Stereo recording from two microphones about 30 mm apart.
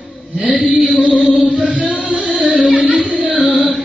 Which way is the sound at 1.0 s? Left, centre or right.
Right.